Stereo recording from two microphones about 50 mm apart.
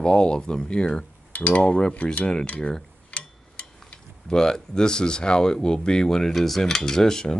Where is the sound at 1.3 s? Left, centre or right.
Left.